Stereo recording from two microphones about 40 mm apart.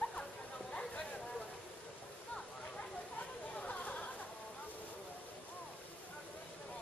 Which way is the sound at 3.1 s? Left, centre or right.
Left.